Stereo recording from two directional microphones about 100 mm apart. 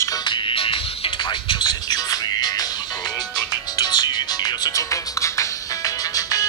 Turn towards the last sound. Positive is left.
turn(degrees=35)  # may be behind; listen again after turning